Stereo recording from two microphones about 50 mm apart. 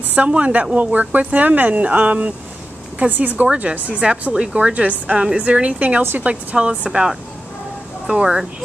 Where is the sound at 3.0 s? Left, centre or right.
Right.